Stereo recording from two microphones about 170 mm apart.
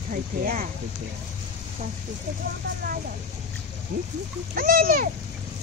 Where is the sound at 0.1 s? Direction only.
55° right (ahead or behind).